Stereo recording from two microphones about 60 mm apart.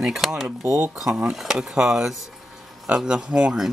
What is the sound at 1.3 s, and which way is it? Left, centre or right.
Speech, centre.